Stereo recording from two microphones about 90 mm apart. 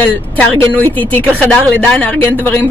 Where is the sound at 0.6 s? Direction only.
20° left (ahead or behind).